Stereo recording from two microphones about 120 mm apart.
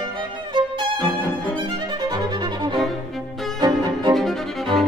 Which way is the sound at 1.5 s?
40° right (ahead or behind).